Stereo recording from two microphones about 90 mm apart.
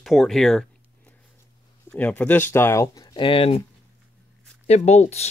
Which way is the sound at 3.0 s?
50° left (ahead or behind).